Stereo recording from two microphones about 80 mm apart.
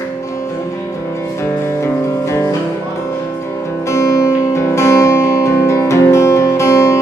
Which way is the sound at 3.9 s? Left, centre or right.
Left.